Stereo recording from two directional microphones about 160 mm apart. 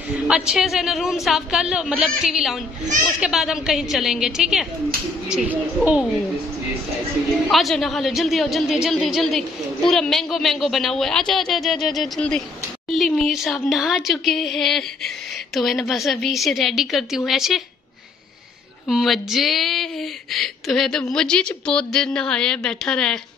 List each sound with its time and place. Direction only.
0.3 s a woman's voice: centre (ahead or behind)
7.5 s speech: centre (ahead or behind)
18.9 s speech: centre (ahead or behind)